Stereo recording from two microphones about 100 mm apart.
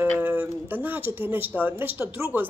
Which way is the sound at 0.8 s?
20° right (ahead or behind).